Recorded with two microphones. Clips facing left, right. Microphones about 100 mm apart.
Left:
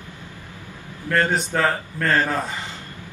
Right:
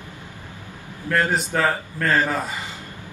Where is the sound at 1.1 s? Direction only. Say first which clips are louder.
Left 1 dB; 5° right (ahead or behind).